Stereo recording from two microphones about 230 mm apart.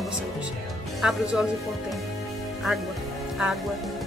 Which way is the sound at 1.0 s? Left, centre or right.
Centre.